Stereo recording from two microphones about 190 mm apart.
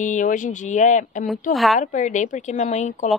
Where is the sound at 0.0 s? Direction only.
40° left (ahead or behind).